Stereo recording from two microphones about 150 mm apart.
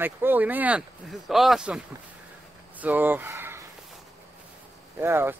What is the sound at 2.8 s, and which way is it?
Speech, 10° right (ahead or behind).